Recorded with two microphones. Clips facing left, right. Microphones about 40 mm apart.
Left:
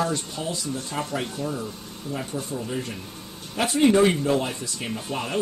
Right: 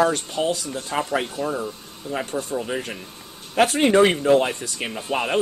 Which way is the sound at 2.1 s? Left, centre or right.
Right.